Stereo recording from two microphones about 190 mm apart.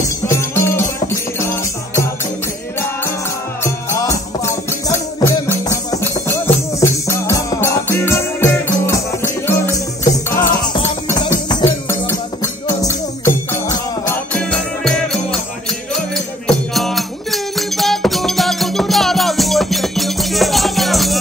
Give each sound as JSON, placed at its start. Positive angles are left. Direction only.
{"t": 0.3, "sound": "music", "side_deg": 15}
{"t": 3.6, "sound": "music", "side_deg": 15}
{"t": 16.4, "sound": "music", "side_deg": 0}